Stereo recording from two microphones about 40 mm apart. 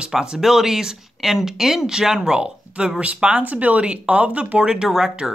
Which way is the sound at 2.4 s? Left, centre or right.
Right.